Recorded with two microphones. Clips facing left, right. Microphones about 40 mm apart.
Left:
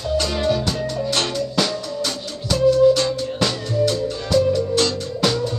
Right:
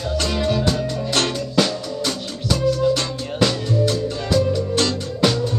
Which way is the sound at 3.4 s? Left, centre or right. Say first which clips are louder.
Right 2 dB; centre.